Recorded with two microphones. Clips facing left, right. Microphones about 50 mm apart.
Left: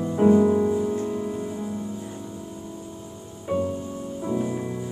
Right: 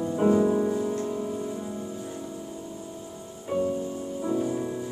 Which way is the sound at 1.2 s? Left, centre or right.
Left.